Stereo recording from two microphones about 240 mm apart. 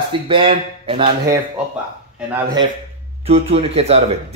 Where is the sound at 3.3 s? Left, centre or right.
Right.